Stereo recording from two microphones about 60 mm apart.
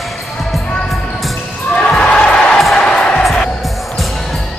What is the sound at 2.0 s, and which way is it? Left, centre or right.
Music, centre.